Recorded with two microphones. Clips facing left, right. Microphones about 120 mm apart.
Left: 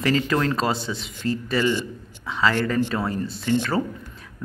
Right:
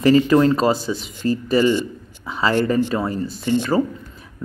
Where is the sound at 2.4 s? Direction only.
25° right (ahead or behind).